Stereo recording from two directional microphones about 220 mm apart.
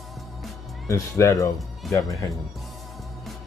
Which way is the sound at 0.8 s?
15° left (ahead or behind).